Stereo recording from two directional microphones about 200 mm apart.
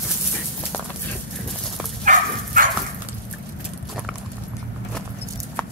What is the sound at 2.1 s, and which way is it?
Dog, 40° right (ahead or behind).